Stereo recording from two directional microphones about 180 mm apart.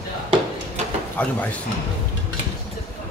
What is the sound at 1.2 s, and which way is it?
Speech, 10° left (ahead or behind).